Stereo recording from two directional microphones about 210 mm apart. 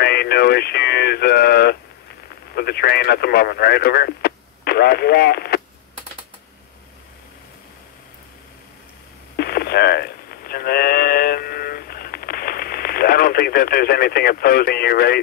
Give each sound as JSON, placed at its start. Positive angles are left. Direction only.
{"t": 0.0, "sound": "speech", "side_deg": 50}
{"t": 9.4, "sound": "sheep", "side_deg": 50}